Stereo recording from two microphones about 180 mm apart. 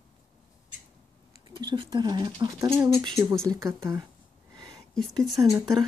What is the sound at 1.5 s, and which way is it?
Speech, 25° right (ahead or behind).